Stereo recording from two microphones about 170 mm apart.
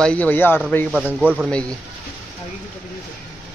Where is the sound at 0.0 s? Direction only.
10° left (ahead or behind).